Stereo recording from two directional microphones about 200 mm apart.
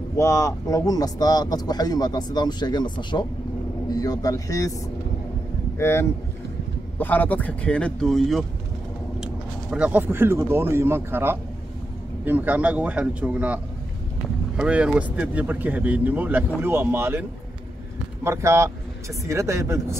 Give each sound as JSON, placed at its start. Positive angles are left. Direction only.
{"t": 0.2, "sound": "speech", "side_deg": 15}
{"t": 5.8, "sound": "speech", "side_deg": 10}
{"t": 14.6, "sound": "speech", "side_deg": -5}